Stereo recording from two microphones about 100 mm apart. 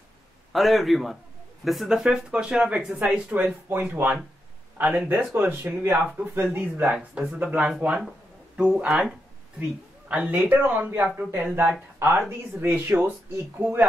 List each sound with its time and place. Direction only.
0.5 s a man's voice: centre (ahead or behind)
9.6 s speech: 15° right (ahead or behind)